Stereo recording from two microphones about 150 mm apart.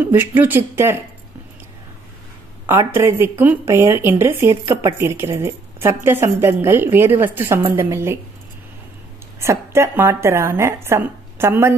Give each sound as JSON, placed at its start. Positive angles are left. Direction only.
{"t": 0.0, "sound": "speech", "side_deg": -15}
{"t": 2.6, "sound": "speech", "side_deg": -20}
{"t": 9.4, "sound": "speech", "side_deg": -20}